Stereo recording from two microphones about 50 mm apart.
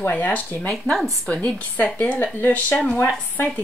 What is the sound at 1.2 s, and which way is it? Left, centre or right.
A woman's voice, left.